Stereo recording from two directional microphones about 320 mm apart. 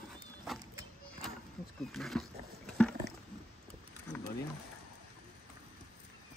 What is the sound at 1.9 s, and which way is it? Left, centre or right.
Wild animals, centre.